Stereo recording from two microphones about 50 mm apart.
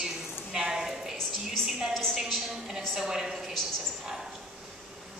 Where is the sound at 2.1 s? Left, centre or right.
Centre.